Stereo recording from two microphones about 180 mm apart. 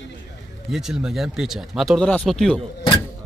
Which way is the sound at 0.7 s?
Centre (ahead or behind).